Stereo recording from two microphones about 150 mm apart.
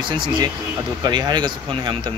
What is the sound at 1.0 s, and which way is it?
Speech, 30° right (ahead or behind).